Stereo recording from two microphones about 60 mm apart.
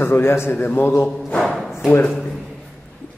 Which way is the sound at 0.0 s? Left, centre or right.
Left.